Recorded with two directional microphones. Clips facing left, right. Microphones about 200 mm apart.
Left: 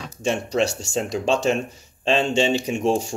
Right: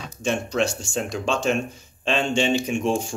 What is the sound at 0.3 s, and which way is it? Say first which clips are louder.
Speech: left 1 dB; 40° left (ahead or behind).